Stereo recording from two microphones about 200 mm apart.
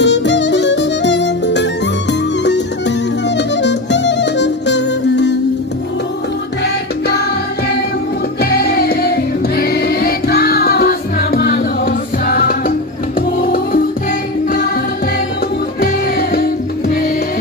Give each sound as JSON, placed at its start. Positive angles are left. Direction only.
{"t": 0.0, "sound": "music", "side_deg": 60}
{"t": 3.3, "sound": "music", "side_deg": 60}
{"t": 8.4, "sound": "music", "side_deg": 50}
{"t": 15.8, "sound": "music", "side_deg": 50}